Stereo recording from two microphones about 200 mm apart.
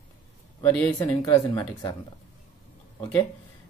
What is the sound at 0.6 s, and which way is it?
Speech, 10° left (ahead or behind).